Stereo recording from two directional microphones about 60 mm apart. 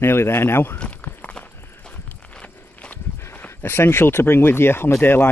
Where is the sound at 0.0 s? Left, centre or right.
Left.